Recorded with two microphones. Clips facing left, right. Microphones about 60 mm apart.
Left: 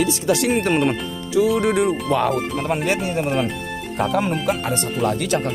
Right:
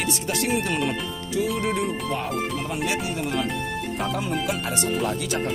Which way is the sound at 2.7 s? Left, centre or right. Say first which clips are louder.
Left 6 dB; left.